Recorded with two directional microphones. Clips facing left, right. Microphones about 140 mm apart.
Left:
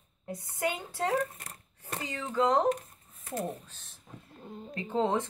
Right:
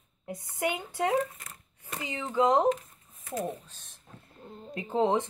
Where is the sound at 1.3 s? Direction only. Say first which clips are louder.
Left 1 dB; 40° left (ahead or behind).